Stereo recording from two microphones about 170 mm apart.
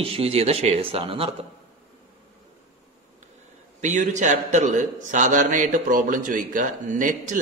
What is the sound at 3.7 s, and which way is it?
A man's voice, 45° right (ahead or behind).